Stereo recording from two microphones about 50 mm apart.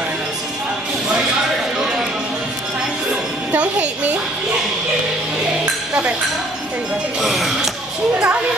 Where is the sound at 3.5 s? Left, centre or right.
Right.